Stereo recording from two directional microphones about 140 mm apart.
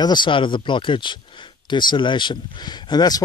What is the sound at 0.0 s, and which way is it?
Speech, 30° left (ahead or behind).